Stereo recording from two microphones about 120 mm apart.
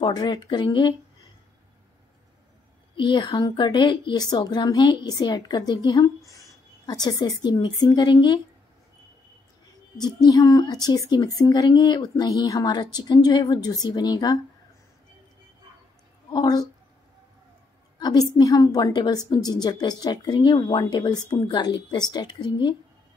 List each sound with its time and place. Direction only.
0.0 s a woman's voice: 35° left (ahead or behind)
3.0 s a woman's voice: 40° left (ahead or behind)
9.9 s a woman's voice: 35° left (ahead or behind)
16.3 s a woman's voice: 35° left (ahead or behind)
17.9 s a woman's voice: 35° left (ahead or behind)